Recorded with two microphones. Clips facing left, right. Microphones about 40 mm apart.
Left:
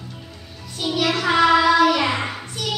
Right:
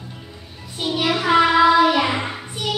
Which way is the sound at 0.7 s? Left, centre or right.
Right.